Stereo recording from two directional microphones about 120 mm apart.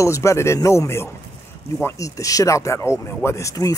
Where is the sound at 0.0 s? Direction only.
25° left (ahead or behind).